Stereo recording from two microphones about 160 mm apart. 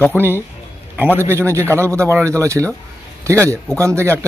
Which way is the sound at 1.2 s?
15° right (ahead or behind).